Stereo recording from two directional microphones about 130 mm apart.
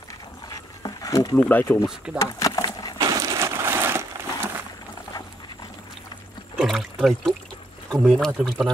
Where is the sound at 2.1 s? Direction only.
25° left (ahead or behind).